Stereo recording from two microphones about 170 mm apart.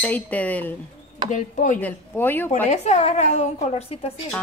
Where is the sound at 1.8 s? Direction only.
10° left (ahead or behind).